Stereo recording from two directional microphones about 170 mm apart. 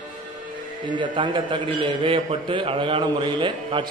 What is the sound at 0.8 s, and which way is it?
A man's voice, 25° right (ahead or behind).